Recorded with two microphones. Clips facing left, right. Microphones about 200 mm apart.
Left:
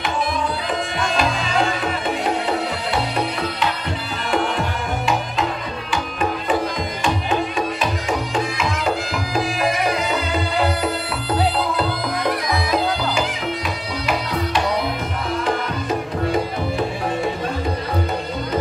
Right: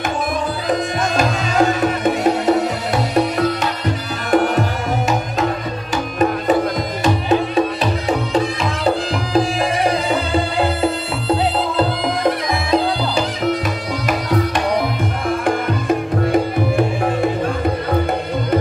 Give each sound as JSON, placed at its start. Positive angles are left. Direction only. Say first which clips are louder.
{"t": 0.7, "sound": "tabla", "louder": "right 4 dB", "side_deg": -45}
{"t": 4.3, "sound": "music", "louder": "right 6 dB", "side_deg": -45}
{"t": 7.0, "sound": "music", "louder": "right 5 dB", "side_deg": -40}
{"t": 9.3, "sound": "music", "louder": "right 4 dB", "side_deg": -30}